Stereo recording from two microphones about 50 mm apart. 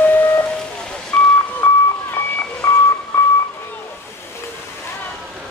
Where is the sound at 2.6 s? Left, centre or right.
Left.